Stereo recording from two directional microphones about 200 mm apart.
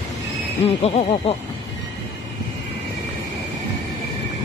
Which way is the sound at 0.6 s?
30° left (ahead or behind).